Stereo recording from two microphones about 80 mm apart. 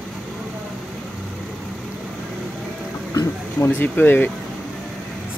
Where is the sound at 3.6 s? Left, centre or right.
Left.